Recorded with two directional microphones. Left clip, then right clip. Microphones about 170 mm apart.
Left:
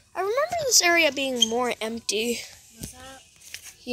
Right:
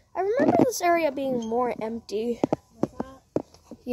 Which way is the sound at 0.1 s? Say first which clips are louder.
Right 1 dB; 35° right (ahead or behind).